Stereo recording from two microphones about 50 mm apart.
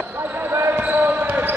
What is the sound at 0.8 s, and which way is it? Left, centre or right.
Basketball bounce, right.